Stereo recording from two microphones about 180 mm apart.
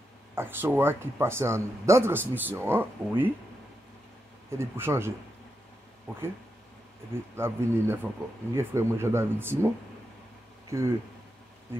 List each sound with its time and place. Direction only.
0.3 s speech: 10° right (ahead or behind)
4.5 s speech: 15° right (ahead or behind)
7.3 s speech: 15° right (ahead or behind)
10.7 s speech: 15° right (ahead or behind)